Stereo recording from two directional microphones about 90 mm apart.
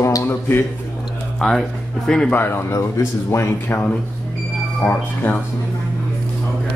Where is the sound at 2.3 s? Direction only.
20° left (ahead or behind).